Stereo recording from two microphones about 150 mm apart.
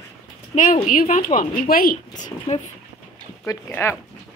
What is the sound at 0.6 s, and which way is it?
Speech, 60° left (ahead or behind).